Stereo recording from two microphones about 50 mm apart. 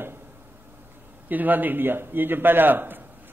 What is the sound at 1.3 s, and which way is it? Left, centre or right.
A man's voice, right.